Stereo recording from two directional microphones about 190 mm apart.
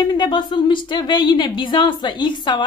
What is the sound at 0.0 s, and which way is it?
Speech, 25° left (ahead or behind).